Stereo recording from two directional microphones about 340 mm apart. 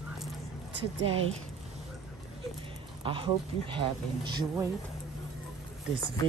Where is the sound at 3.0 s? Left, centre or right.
Centre.